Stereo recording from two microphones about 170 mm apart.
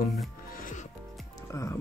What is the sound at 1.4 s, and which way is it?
Speech, 20° left (ahead or behind).